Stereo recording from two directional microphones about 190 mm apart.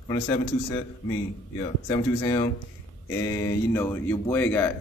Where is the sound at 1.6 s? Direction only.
20° left (ahead or behind).